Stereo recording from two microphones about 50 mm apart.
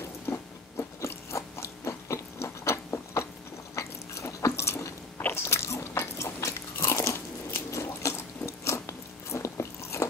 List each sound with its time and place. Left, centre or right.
0.3 s biting: left
3.7 s biting: left
8.1 s biting: left